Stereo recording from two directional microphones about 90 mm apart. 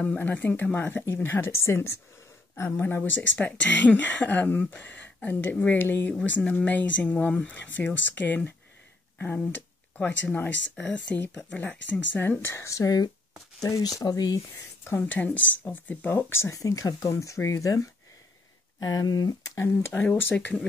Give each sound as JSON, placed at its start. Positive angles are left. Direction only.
{"t": 0.2, "sound": "speech", "side_deg": 20}
{"t": 6.1, "sound": "speech", "side_deg": 15}
{"t": 12.2, "sound": "speech", "side_deg": 25}
{"t": 14.9, "sound": "speech", "side_deg": 20}
{"t": 19.6, "sound": "speech", "side_deg": 25}